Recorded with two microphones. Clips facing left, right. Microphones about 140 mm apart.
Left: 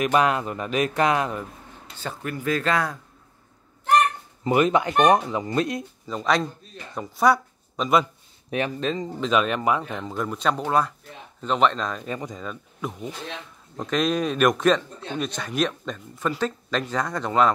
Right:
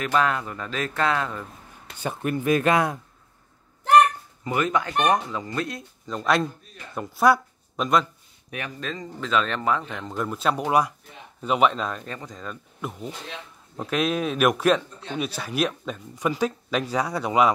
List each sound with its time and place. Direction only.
0.0 s speech: 15° left (ahead or behind)
2.0 s speech: 20° right (ahead or behind)
4.5 s speech: 20° left (ahead or behind)
6.0 s speech: centre (ahead or behind)
8.5 s speech: 25° left (ahead or behind); by 10.1 s 10° left (ahead or behind)
10.1 s speech: centre (ahead or behind)
12.0 s speech: 10° left (ahead or behind)
12.4 s speech: centre (ahead or behind)